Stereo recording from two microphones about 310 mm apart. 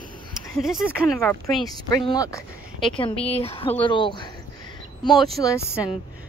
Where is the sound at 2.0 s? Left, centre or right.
Centre.